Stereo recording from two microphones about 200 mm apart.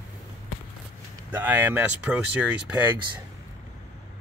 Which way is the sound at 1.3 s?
10° right (ahead or behind).